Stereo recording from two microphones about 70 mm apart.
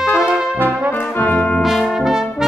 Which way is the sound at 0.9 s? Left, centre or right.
Left.